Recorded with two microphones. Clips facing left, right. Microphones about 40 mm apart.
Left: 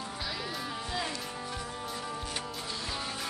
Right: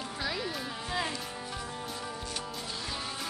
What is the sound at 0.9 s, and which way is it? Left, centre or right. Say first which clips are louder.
Music: right 3 dB; centre.